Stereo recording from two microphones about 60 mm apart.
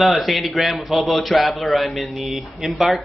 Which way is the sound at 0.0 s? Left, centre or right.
Centre.